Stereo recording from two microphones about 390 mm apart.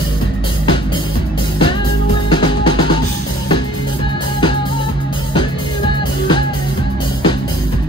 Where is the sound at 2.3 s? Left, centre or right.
Centre.